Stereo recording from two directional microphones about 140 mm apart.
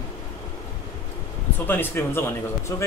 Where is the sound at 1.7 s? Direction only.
15° left (ahead or behind).